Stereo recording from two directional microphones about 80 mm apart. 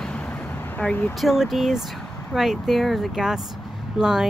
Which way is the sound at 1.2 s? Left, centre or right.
Centre.